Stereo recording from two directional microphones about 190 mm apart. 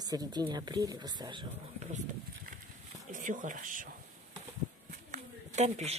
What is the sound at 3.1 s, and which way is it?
Speech, 45° right (ahead or behind).